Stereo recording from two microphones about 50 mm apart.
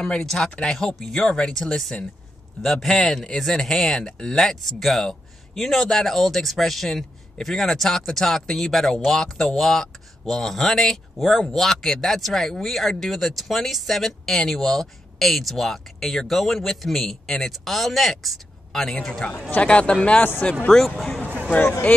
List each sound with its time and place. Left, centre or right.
0.2 s speech: centre
19.5 s speech: left
20.2 s speech: left
20.7 s speech: centre